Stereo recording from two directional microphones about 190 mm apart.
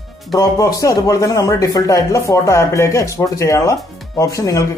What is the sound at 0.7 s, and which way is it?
A man's voice, 20° left (ahead or behind).